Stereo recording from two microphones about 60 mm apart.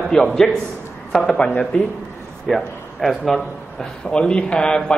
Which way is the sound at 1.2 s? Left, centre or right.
Centre.